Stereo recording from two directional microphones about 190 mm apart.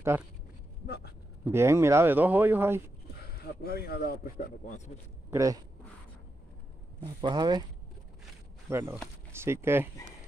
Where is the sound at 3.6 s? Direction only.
55° left (ahead or behind).